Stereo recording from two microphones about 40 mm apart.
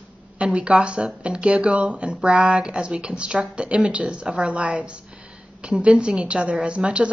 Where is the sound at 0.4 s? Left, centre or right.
Right.